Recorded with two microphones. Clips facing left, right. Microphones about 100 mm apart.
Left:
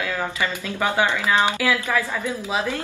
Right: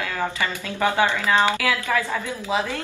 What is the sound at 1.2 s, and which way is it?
Speech, 15° left (ahead or behind).